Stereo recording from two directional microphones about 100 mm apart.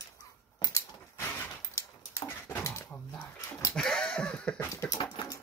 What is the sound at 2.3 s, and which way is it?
Dog, 20° left (ahead or behind).